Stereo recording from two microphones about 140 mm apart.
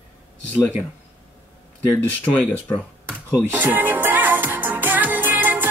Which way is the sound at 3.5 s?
15° right (ahead or behind).